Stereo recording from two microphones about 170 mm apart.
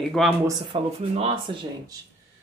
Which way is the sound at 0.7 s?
35° right (ahead or behind).